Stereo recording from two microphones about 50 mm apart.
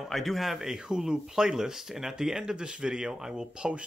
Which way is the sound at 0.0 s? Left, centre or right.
Centre.